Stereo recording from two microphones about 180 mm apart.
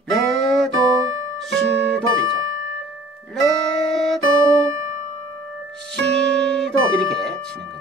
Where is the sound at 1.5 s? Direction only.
5° left (ahead or behind).